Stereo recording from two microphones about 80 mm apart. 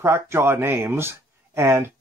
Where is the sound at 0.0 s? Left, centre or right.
Right.